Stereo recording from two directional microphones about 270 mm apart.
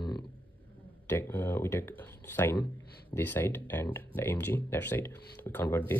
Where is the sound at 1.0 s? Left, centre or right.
Centre.